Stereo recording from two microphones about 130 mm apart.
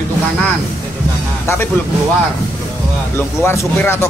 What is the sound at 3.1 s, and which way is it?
Speech, 20° left (ahead or behind).